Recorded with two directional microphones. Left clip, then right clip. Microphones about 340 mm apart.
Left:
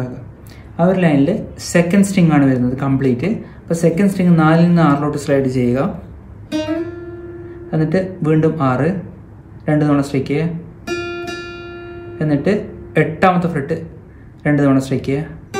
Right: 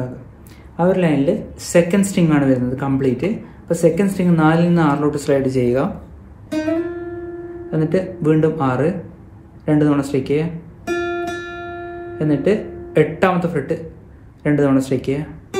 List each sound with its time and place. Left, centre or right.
0.7 s a woman's voice: centre
7.7 s a woman's voice: centre
10.9 s guitar: centre
12.2 s a woman's voice: centre